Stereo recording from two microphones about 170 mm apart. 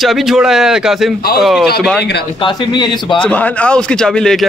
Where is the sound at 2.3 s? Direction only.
30° left (ahead or behind).